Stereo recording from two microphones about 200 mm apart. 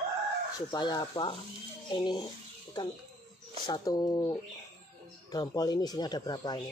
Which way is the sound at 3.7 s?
20° left (ahead or behind).